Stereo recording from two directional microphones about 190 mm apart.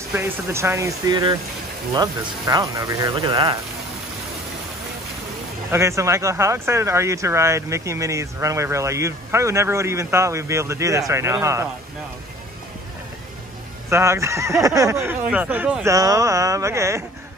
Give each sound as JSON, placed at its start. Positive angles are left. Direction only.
{"t": 0.1, "sound": "speech", "side_deg": -15}
{"t": 5.7, "sound": "speech", "side_deg": -15}
{"t": 13.8, "sound": "speech", "side_deg": -15}